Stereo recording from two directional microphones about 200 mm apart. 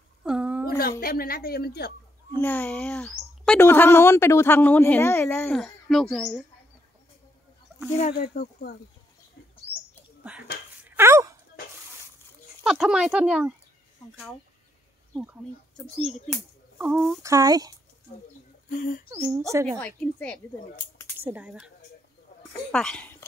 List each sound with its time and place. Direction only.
0.2 s a sound: 5° right (ahead or behind)
0.7 s a woman's voice: 50° left (ahead or behind)
2.4 s speech: 10° left (ahead or behind)
8.1 s a woman's voice: 50° left (ahead or behind)
9.7 s bird: 10° right (ahead or behind)
10.8 s dog: 15° right (ahead or behind)
12.6 s speech: centre (ahead or behind)
15.1 s speech: centre (ahead or behind)
17.2 s speech: 15° right (ahead or behind)
18.1 s a woman's voice: 45° left (ahead or behind)
19.5 s speech: 15° right (ahead or behind)
20.0 s speech: 5° left (ahead or behind)
21.2 s speech: 10° right (ahead or behind)